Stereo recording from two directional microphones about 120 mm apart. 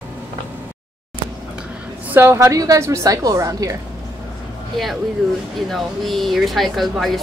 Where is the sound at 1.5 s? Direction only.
10° right (ahead or behind); by 3.7 s 30° right (ahead or behind).